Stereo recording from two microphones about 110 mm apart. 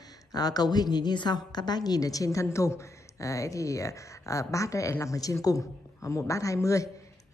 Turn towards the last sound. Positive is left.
turn(degrees=30)  # may be behind; listen again after turning